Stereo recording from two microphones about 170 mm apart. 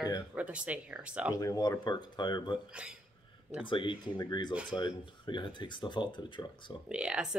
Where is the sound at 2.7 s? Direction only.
5° right (ahead or behind).